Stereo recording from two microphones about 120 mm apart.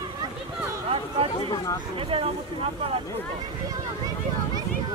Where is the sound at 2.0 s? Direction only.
50° right (ahead or behind).